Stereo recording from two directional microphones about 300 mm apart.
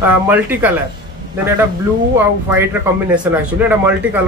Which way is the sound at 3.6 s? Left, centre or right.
Centre.